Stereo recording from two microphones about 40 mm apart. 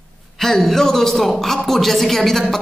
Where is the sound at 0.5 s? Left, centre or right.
Centre.